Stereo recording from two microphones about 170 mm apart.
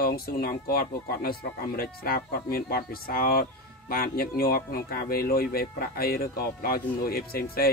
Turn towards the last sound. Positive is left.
turn(degrees=65)  # may be behind; listen again after turning